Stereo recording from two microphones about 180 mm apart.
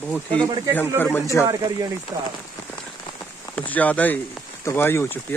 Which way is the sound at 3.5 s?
10° left (ahead or behind).